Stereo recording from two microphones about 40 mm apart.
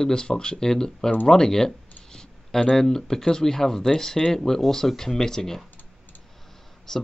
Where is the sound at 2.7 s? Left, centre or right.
Centre.